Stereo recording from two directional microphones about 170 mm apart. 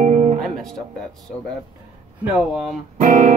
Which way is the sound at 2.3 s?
Centre (ahead or behind).